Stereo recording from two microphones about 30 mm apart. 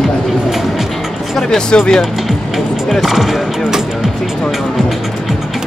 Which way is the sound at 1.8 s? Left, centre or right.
Centre.